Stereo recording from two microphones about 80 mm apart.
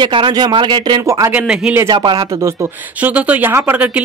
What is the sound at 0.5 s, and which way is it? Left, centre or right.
Speech, right.